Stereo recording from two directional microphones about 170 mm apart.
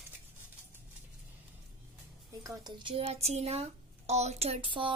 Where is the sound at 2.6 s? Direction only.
30° right (ahead or behind).